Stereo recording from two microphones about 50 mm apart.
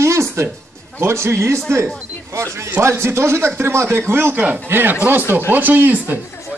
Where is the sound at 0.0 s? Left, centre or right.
Right.